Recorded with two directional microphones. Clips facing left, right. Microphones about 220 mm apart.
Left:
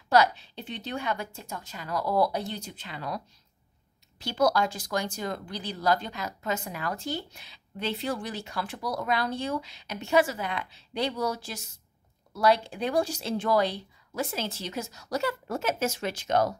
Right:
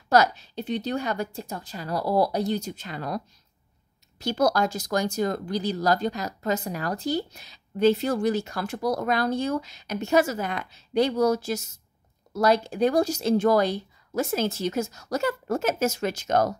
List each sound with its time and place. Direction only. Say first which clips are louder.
0.1 s a woman's voice: right 2 dB; 45° right (ahead or behind)
4.2 s speech: right 2 dB; 45° right (ahead or behind)